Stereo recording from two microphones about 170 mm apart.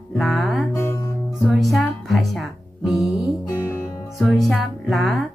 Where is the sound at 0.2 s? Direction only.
Centre (ahead or behind).